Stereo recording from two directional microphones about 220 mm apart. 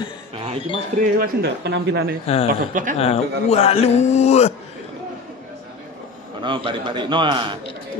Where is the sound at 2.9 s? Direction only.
25° left (ahead or behind).